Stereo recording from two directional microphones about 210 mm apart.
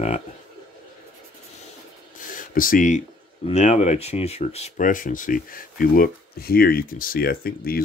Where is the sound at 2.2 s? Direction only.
40° left (ahead or behind).